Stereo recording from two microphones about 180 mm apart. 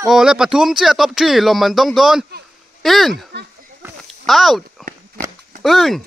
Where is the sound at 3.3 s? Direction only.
70° right (ahead or behind).